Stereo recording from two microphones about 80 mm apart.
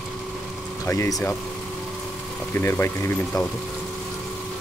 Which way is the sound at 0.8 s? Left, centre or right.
Left.